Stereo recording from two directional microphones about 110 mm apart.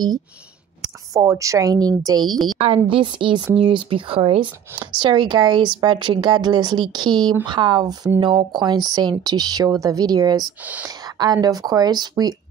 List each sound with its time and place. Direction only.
0.8 s speech: 30° right (ahead or behind)
2.6 s speech: 55° right (ahead or behind); by 10.5 s 35° right (ahead or behind)
10.6 s speech: 15° right (ahead or behind)
10.9 s whispering: 40° right (ahead or behind)
11.4 s speech: 35° right (ahead or behind)